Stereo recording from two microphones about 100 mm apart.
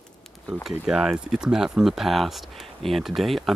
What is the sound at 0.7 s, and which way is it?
Speech, 5° right (ahead or behind).